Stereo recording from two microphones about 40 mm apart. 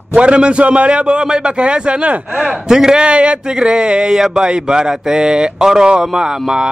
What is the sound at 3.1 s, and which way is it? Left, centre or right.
Speech, right.